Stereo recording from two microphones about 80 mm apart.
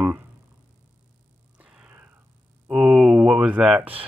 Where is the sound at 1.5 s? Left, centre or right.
Centre.